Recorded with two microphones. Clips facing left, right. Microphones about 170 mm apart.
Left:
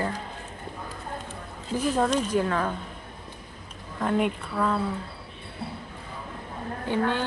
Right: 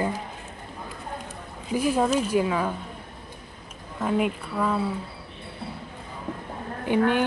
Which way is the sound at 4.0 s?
5° right (ahead or behind).